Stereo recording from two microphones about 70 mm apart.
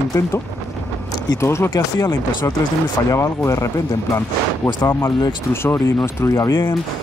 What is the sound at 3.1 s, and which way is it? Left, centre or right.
Speech, left.